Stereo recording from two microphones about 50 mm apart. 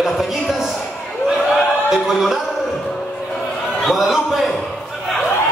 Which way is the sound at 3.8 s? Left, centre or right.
Centre.